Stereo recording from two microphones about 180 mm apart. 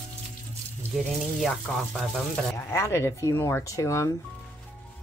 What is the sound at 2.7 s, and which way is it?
Speech, 15° left (ahead or behind).